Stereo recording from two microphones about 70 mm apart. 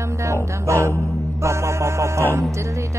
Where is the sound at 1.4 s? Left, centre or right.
Right.